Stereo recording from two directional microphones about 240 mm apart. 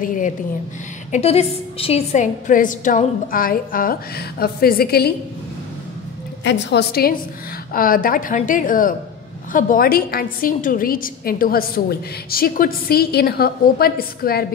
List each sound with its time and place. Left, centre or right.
0.0 s a woman's voice: left
6.4 s a woman's voice: left